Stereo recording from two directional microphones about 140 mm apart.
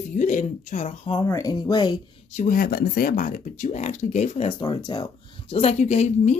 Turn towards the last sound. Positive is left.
turn(degrees=55)  # may be behind; listen again after turning